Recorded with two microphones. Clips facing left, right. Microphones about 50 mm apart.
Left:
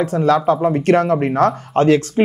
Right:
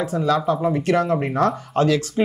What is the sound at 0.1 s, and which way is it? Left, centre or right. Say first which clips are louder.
Speech: left 4 dB; left.